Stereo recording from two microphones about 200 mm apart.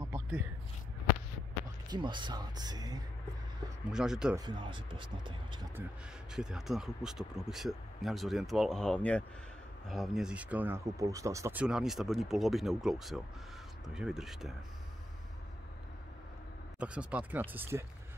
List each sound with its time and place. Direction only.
1.9 s speech: 25° right (ahead or behind)
3.9 s speech: 5° right (ahead or behind)
4.4 s speech: 25° right (ahead or behind)
6.3 s speech: centre (ahead or behind)
16.8 s speech: 5° right (ahead or behind)